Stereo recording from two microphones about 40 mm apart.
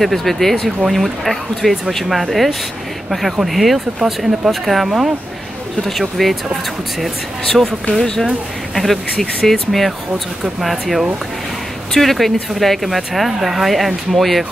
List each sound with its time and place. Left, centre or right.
0.0 s speech: centre
5.9 s speech: centre
7.5 s speech: right
8.7 s speech: centre
9.1 s speech: centre
9.5 s speech: centre